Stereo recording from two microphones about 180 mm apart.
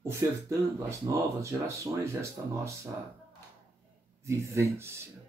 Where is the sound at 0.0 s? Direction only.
15° right (ahead or behind).